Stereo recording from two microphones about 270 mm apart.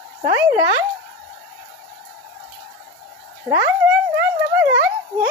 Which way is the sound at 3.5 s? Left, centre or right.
Centre.